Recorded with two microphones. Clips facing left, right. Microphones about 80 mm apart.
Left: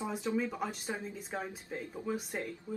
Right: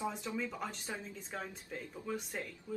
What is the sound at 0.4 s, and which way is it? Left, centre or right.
Speech, centre.